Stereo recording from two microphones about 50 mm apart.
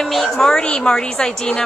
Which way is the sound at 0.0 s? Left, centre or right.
Centre.